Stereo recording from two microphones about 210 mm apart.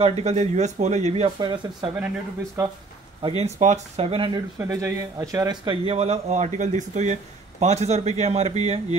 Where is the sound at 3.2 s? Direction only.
30° right (ahead or behind).